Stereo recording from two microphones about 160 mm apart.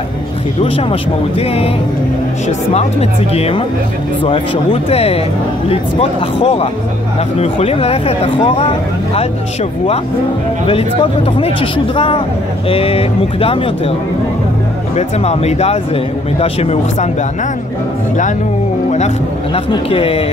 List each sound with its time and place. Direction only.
1.4 s speech: 40° left (ahead or behind)
2.7 s speech: 40° left (ahead or behind)
4.8 s speech: 40° left (ahead or behind)
10.7 s speech: 35° left (ahead or behind)
15.0 s speech: 40° left (ahead or behind)
19.5 s speech: 35° left (ahead or behind)